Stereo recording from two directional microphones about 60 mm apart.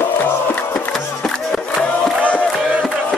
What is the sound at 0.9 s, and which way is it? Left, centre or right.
Music, centre.